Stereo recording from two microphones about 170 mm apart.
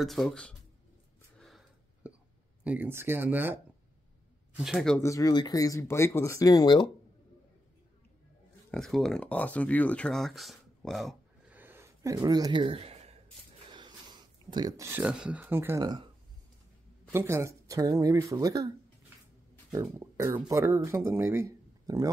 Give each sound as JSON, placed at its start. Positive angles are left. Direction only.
{"t": 0.0, "sound": "speech", "side_deg": 0}
{"t": 2.0, "sound": "hiccup", "side_deg": -5}
{"t": 2.6, "sound": "speech", "side_deg": -10}
{"t": 4.6, "sound": "speech", "side_deg": 0}
{"t": 5.0, "sound": "speech", "side_deg": 20}
{"t": 8.7, "sound": "speech", "side_deg": 0}
{"t": 13.7, "sound": "speech", "side_deg": -30}
{"t": 15.8, "sound": "speech", "side_deg": -25}
{"t": 17.1, "sound": "speech", "side_deg": -15}
{"t": 19.7, "sound": "speech", "side_deg": -20}